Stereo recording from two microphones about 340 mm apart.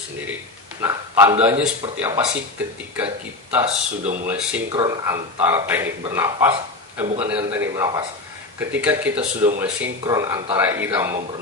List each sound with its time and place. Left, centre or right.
0.7 s speech: centre
3.6 s a man's voice: centre